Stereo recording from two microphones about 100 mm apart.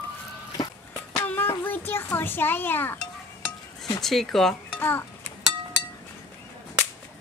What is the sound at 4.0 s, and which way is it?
Speech, 5° left (ahead or behind).